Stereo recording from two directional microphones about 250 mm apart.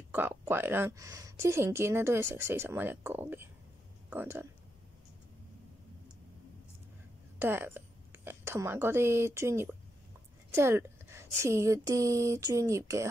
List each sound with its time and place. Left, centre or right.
0.1 s a woman's voice: centre
7.3 s a woman's voice: centre